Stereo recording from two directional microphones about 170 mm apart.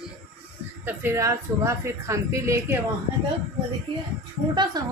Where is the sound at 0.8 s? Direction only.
15° right (ahead or behind).